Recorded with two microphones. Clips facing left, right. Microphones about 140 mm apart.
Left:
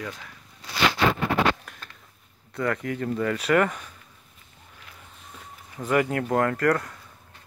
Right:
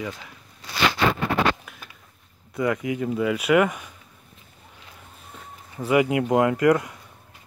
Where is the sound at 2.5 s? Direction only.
10° right (ahead or behind).